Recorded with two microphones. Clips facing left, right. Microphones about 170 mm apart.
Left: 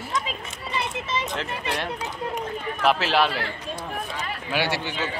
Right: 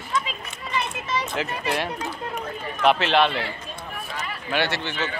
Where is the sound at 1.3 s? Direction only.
5° right (ahead or behind).